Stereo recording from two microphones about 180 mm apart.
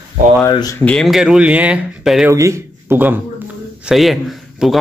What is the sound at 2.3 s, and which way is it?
Speech, 15° right (ahead or behind).